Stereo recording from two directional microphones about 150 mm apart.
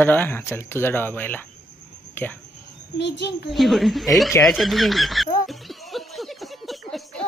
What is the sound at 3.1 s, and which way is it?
Speech, 90° left.